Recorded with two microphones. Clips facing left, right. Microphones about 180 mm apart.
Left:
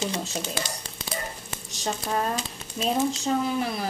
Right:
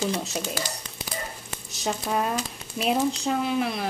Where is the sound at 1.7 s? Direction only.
5° right (ahead or behind).